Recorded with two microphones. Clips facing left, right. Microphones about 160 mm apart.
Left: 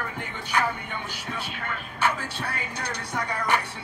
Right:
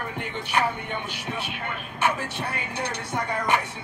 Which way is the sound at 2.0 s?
25° right (ahead or behind).